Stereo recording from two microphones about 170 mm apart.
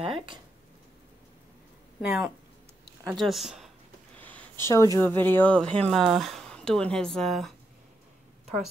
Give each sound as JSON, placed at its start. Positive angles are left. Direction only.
{"t": 0.0, "sound": "speech", "side_deg": -30}
{"t": 2.0, "sound": "speech", "side_deg": -5}
{"t": 4.2, "sound": "a sound", "side_deg": 10}
{"t": 4.9, "sound": "speech", "side_deg": 10}